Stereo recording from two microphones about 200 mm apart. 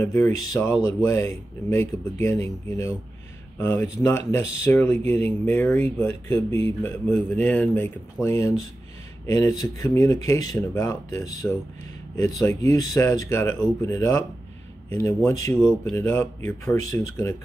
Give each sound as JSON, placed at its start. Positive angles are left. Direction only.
{"t": 0.0, "sound": "speech", "side_deg": 15}